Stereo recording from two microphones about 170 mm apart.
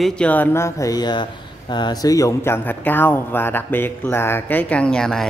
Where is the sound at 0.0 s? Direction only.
10° left (ahead or behind).